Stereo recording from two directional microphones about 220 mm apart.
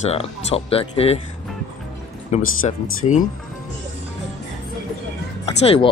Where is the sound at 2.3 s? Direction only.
30° left (ahead or behind).